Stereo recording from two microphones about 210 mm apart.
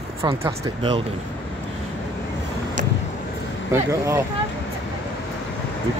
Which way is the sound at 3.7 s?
15° right (ahead or behind).